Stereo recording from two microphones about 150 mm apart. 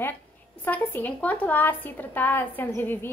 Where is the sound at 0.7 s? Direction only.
10° left (ahead or behind).